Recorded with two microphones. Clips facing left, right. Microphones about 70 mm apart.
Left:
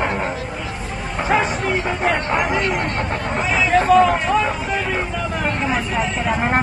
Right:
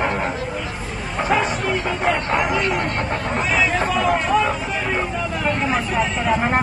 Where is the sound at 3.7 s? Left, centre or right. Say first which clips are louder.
Left 6 dB; left.